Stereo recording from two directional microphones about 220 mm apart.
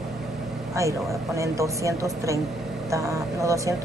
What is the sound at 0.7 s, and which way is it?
A woman's voice, 15° right (ahead or behind).